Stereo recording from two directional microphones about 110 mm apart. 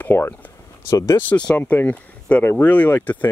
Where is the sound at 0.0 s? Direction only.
20° left (ahead or behind).